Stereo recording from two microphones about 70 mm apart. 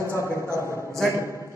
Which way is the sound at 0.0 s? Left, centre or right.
Right.